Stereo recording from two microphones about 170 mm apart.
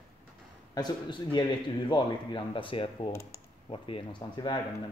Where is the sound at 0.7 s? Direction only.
25° left (ahead or behind).